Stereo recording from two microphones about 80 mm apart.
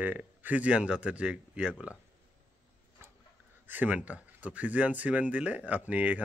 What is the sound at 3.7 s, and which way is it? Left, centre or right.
Speech, centre.